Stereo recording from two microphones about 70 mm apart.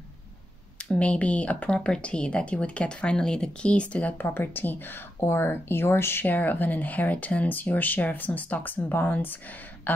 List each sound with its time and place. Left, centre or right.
0.8 s speech: centre
4.2 s speech: left